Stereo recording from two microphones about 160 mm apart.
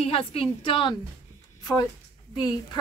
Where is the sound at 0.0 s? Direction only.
35° left (ahead or behind).